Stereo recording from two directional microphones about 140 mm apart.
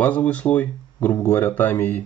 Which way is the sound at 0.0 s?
10° left (ahead or behind).